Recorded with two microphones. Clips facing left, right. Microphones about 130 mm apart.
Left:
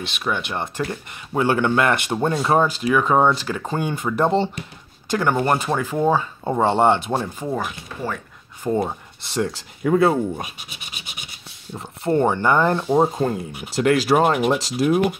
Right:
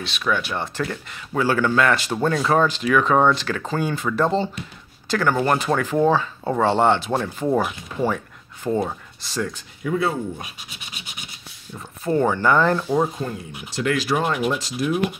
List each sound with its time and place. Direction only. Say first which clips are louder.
0.2 s speech: right 1 dB; 20° left (ahead or behind)
7.4 s speech: right 5 dB; 10° right (ahead or behind)
8.8 s speech: left 1 dB; 20° left (ahead or behind)
9.8 s speech: left 6 dB; 50° left (ahead or behind)
11.7 s speech: left 2 dB; 30° left (ahead or behind)
13.2 s speech: left 6 dB; 40° left (ahead or behind)